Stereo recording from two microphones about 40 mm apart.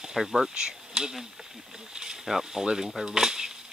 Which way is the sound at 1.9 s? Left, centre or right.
Centre.